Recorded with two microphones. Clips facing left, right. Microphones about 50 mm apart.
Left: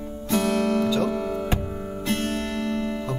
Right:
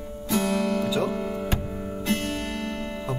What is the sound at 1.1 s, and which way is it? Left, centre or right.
Music, right.